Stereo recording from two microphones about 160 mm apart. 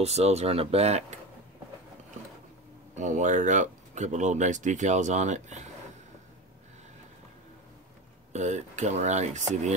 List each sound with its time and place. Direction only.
0.0 s speech: 40° right (ahead or behind)
3.0 s speech: 50° right (ahead or behind)
8.3 s speech: 45° right (ahead or behind)